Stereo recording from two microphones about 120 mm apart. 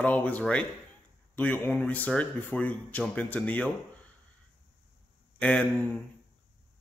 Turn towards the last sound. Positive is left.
turn(degrees=10)  # may be behind; listen again after turning